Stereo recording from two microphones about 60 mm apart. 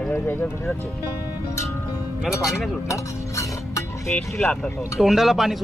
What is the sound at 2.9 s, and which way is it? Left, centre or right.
Music, left.